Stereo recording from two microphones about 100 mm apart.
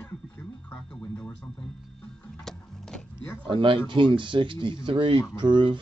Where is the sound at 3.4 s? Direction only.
55° right (ahead or behind).